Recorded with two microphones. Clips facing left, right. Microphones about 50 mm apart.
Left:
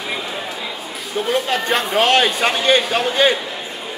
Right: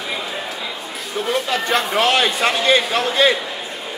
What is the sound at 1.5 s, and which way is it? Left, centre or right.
Speech, centre.